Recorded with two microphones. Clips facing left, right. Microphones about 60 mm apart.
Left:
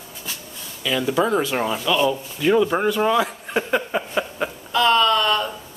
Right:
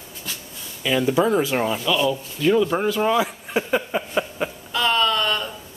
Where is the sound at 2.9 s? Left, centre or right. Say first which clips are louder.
Left 1 dB; centre.